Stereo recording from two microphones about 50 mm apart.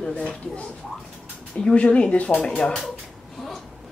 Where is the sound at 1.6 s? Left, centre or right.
Left.